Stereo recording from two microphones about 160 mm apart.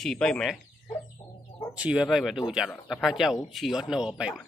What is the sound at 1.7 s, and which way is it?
Speech, 5° right (ahead or behind).